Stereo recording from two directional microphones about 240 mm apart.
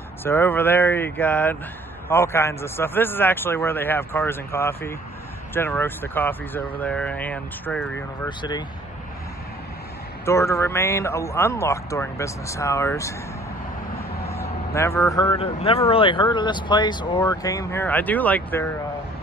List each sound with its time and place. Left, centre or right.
0.2 s speech: centre
8.3 s speech: centre
10.2 s speech: centre
14.3 s speech: centre